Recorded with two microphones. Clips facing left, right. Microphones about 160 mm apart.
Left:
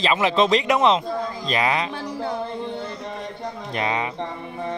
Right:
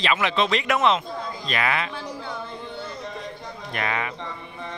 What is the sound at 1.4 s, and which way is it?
Music, 30° left (ahead or behind).